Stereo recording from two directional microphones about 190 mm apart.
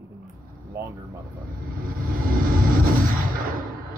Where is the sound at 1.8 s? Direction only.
50° right (ahead or behind).